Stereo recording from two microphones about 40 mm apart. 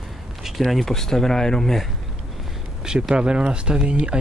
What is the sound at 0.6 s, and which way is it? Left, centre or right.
Speech, centre.